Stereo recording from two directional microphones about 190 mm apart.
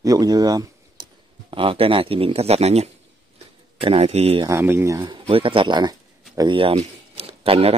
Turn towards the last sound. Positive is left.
turn(degrees=-30)  # may be behind; listen again after turning